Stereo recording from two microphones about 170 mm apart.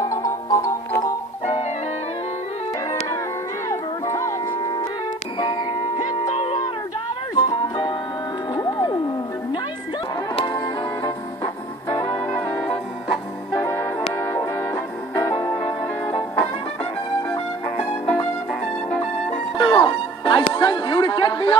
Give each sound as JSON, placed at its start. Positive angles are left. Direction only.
{"t": 0.0, "sound": "music", "side_deg": 20}
{"t": 3.6, "sound": "music", "side_deg": 15}
{"t": 6.3, "sound": "music", "side_deg": 30}
{"t": 10.3, "sound": "music", "side_deg": 25}
{"t": 11.9, "sound": "music", "side_deg": 25}
{"t": 12.3, "sound": "brass instrument", "side_deg": 10}
{"t": 15.6, "sound": "music", "side_deg": 35}
{"t": 19.6, "sound": "music", "side_deg": 25}
{"t": 20.5, "sound": "a sound", "side_deg": 25}